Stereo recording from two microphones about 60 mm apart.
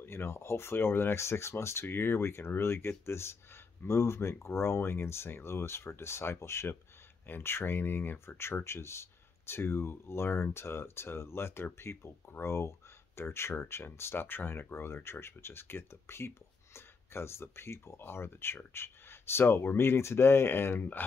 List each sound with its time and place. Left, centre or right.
0.0 s speech: left